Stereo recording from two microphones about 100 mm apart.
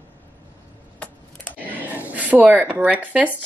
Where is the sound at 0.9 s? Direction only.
10° left (ahead or behind).